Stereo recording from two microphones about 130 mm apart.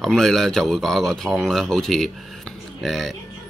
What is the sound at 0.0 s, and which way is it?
A man's voice, centre (ahead or behind).